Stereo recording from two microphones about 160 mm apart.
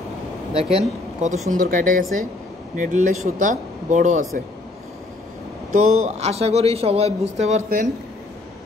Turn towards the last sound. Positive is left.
turn(degrees=-50)  # may be behind; listen again after turning